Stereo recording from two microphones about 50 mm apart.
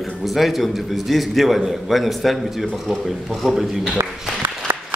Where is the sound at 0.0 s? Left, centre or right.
Centre.